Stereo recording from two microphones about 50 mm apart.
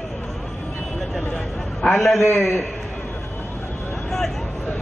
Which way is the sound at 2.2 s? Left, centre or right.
Left.